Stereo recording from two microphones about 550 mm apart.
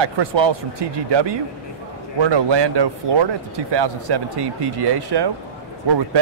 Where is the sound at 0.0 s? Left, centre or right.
Right.